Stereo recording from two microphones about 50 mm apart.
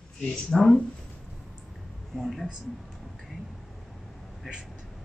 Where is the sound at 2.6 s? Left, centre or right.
Centre.